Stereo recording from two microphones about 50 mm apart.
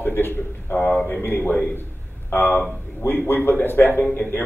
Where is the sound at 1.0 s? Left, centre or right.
Left.